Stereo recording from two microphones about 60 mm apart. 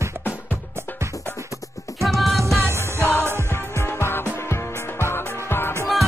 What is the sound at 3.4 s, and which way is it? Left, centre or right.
Music, left.